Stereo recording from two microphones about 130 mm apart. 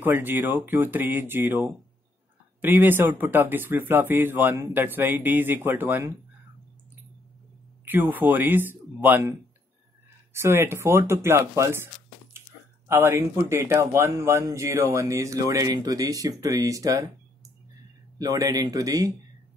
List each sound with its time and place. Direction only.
0.0 s speech: 15° right (ahead or behind)
7.8 s speech: 15° right (ahead or behind)
10.3 s speech: 20° right (ahead or behind)
18.2 s speech: 25° right (ahead or behind)